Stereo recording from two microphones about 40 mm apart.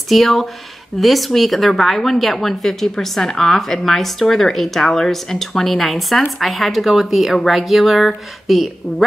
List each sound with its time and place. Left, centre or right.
0.1 s a woman's voice: centre